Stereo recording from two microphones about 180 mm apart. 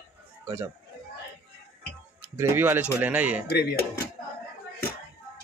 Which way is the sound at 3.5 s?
60° left (ahead or behind).